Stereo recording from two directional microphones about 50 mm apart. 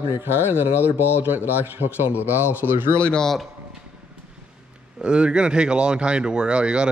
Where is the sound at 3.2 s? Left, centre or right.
Centre.